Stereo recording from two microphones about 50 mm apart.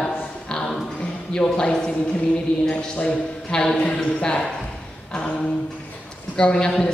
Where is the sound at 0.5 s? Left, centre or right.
Centre.